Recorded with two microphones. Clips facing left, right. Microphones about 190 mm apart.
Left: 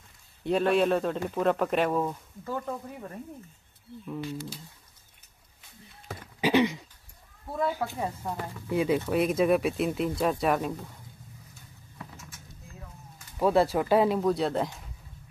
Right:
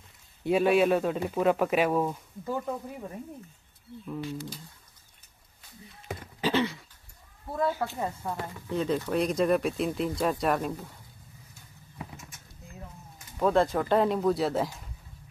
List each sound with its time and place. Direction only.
0.5 s speech: 5° right (ahead or behind)
6.4 s a sound: 15° left (ahead or behind)
7.5 s speech: 10° left (ahead or behind)
7.9 s speech: centre (ahead or behind)
13.4 s speech: 10° left (ahead or behind)